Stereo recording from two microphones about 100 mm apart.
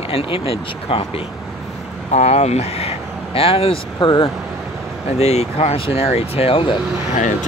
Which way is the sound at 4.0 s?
50° left (ahead or behind).